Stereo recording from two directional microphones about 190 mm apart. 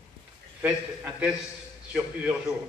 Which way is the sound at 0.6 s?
10° right (ahead or behind).